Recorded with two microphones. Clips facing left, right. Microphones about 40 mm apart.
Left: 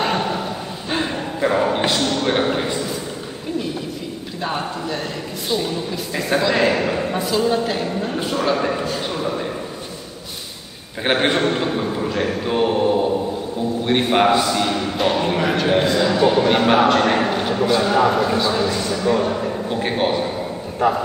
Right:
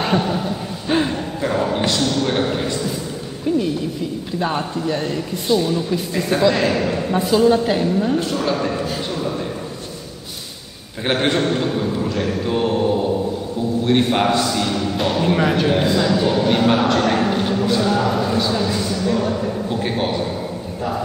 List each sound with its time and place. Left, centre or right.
0.0 s a sound: centre
1.1 s a sound: centre
4.4 s a man's voice: centre
7.2 s a man's voice: centre
11.1 s a man's voice: centre
16.0 s a man's voice: centre
17.7 s a man's voice: left